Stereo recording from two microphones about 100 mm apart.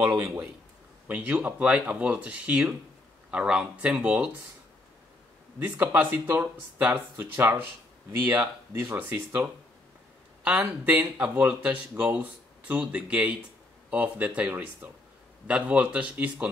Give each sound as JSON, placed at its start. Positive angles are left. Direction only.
{"t": 0.2, "sound": "speech", "side_deg": -30}
{"t": 1.0, "sound": "speech", "side_deg": -15}
{"t": 5.6, "sound": "speech", "side_deg": -20}
{"t": 10.4, "sound": "speech", "side_deg": -15}